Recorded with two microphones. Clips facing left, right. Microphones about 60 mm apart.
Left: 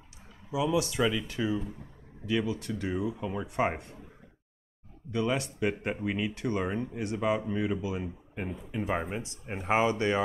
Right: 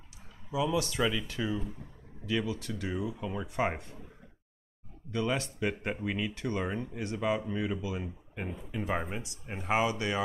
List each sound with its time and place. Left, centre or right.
0.5 s speech: centre
2.2 s speech: left
5.1 s speech: centre
7.0 s speech: left
9.7 s speech: left